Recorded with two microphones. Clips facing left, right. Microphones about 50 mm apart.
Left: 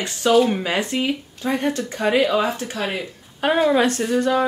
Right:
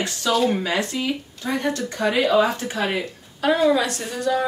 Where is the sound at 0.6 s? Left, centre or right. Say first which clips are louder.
Left 2 dB; left.